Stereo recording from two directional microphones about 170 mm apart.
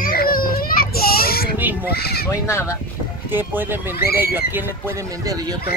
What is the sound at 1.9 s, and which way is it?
Speech, 65° left (ahead or behind).